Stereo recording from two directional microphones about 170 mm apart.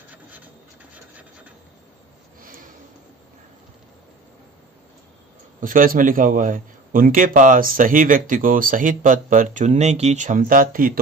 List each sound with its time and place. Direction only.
5.6 s a man's voice: 55° right (ahead or behind)